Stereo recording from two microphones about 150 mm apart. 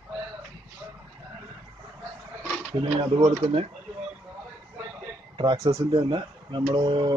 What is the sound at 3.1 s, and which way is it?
Speech, 40° right (ahead or behind).